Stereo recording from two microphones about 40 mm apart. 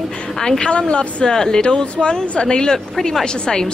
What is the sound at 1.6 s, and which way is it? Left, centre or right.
Speech, left.